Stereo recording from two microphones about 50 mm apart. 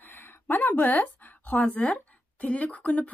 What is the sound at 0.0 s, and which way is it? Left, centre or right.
Speech, left.